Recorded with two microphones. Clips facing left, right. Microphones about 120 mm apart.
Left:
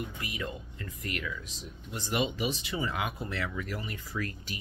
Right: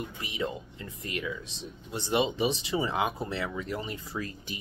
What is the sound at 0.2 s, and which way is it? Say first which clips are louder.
Speech: right 4 dB; 25° right (ahead or behind).